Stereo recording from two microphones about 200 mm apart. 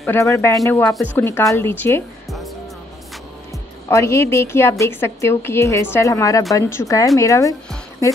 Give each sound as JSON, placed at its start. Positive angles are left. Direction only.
{"t": 0.0, "sound": "a woman's voice", "side_deg": 15}
{"t": 2.2, "sound": "music", "side_deg": 0}
{"t": 3.9, "sound": "a woman's voice", "side_deg": 15}